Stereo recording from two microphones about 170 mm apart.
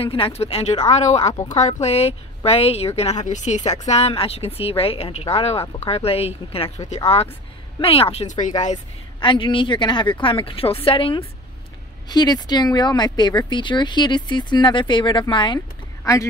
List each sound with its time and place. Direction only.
0.0 s a woman's voice: 35° left (ahead or behind)
9.2 s speech: 30° left (ahead or behind)
16.0 s speech: 15° left (ahead or behind)